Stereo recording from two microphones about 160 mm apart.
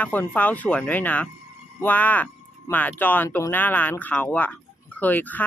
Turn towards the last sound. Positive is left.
turn(degrees=10)  # may be behind; listen again after turning